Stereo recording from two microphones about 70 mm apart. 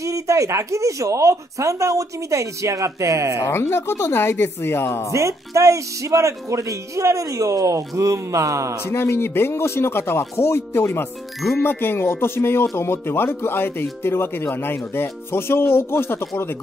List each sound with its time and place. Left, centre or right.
0.0 s speech: right
3.4 s speech: left
5.1 s speech: right
8.8 s speech: left